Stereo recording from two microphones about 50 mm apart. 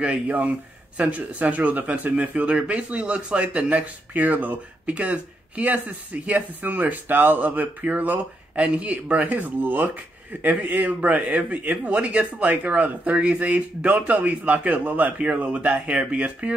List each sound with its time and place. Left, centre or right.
0.0 s a man's voice: right
8.5 s a man's voice: right